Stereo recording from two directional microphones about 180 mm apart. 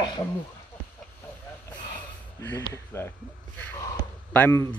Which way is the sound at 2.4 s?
15° left (ahead or behind).